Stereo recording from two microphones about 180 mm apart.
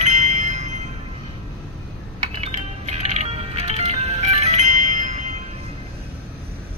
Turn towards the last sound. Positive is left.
turn(degrees=-45)  # may be behind; listen again after turning